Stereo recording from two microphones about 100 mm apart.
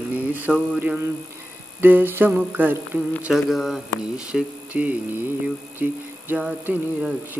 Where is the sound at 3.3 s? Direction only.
Centre (ahead or behind).